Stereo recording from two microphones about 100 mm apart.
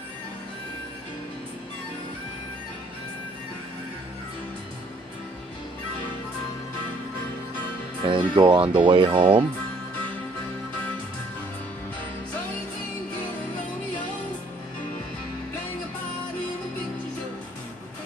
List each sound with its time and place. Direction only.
8.0 s speech: 50° right (ahead or behind)